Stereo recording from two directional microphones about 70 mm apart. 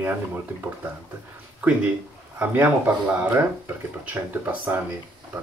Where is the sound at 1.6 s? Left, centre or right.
Right.